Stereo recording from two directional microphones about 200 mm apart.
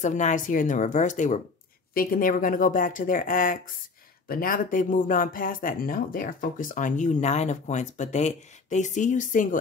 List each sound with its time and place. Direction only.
0.0 s speech: 40° left (ahead or behind)